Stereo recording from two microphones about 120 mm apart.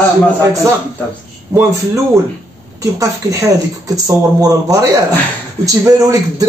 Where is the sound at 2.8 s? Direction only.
25° right (ahead or behind).